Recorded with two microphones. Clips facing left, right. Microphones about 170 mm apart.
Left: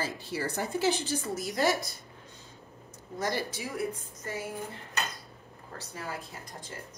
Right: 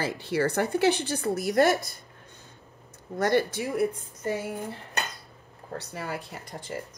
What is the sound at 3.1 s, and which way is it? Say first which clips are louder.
Speech: right 8 dB; 65° right (ahead or behind).